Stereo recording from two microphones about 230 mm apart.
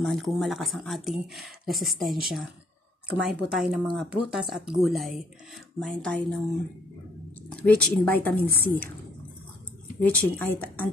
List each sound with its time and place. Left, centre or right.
0.0 s speech: centre
7.6 s speech: centre
9.9 s speech: centre